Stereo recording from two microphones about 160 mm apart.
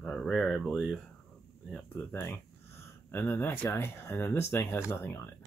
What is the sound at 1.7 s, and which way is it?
Speech, 10° left (ahead or behind).